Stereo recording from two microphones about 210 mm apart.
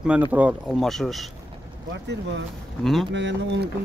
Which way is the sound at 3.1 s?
55° right (ahead or behind).